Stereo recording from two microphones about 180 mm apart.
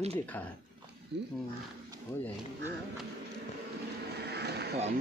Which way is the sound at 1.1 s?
75° right (ahead or behind).